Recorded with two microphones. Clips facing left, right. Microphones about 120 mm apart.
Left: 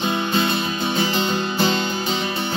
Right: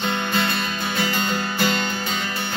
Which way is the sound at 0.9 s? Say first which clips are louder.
Left 2 dB; 20° left (ahead or behind).